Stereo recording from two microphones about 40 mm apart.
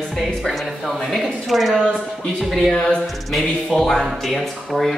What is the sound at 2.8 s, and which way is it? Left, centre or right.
Speech, centre.